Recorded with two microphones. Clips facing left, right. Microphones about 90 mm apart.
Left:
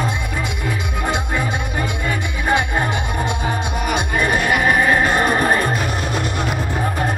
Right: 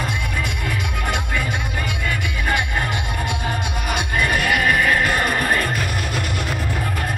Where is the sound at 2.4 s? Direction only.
20° left (ahead or behind).